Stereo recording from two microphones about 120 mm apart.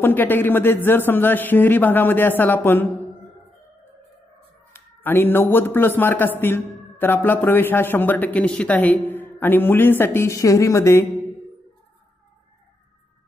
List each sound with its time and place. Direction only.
0.0 s a man's voice: 15° left (ahead or behind)
4.7 s a man's voice: 20° left (ahead or behind)